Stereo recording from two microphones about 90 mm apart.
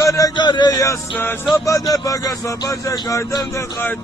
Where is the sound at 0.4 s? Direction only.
55° left (ahead or behind).